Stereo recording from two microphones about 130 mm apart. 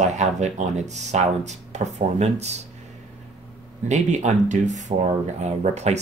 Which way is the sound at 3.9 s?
65° right (ahead or behind).